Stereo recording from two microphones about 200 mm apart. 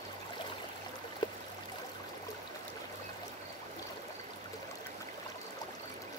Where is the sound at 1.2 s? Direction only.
20° left (ahead or behind).